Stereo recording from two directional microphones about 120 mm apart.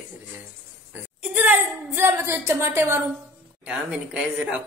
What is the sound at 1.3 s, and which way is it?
A woman's voice, 15° right (ahead or behind).